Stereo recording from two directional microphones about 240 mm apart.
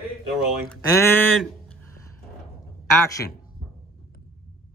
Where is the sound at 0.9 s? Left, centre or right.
Centre.